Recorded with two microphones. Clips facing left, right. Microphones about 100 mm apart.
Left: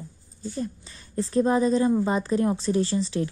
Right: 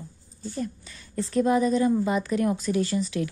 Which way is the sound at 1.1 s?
30° left (ahead or behind).